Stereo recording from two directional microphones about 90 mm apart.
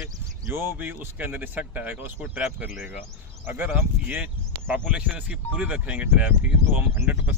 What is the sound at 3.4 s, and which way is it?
Speech, 20° right (ahead or behind).